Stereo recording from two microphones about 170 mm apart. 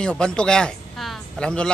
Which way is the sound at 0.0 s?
5° left (ahead or behind).